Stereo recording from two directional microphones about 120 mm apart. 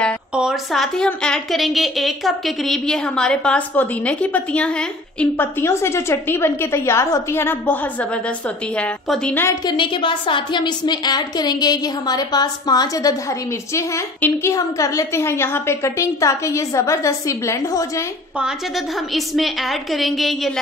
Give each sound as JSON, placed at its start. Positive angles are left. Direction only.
{"t": 0.3, "sound": "a woman's voice", "side_deg": -5}
{"t": 9.7, "sound": "a woman's voice", "side_deg": 45}
{"t": 19.1, "sound": "a woman's voice", "side_deg": 0}